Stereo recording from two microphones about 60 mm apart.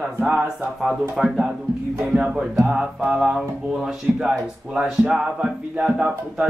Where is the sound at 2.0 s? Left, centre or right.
Right.